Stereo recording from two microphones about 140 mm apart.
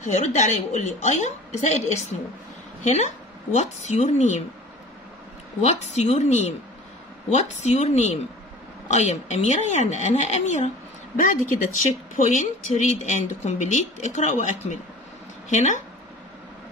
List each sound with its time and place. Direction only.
0.0 s speech: 55° left (ahead or behind)
5.6 s a woman's voice: 55° left (ahead or behind)
11.2 s speech: 65° left (ahead or behind)